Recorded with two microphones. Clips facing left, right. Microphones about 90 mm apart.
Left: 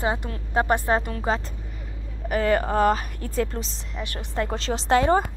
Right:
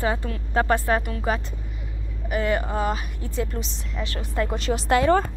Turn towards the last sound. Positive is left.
turn(degrees=30)  # may be behind; listen again after turning